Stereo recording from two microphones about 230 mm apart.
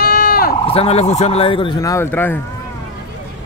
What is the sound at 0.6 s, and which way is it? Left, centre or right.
Speech, left.